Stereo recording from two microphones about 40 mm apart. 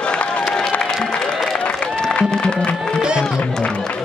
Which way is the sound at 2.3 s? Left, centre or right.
Left.